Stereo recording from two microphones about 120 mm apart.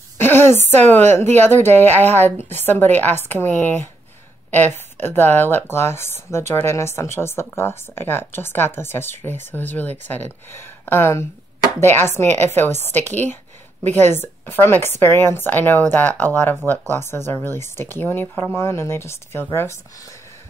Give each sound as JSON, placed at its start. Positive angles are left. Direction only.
{"t": 0.2, "sound": "a sound", "side_deg": 20}
{"t": 0.6, "sound": "speech", "side_deg": -70}
{"t": 1.4, "sound": "speech", "side_deg": 20}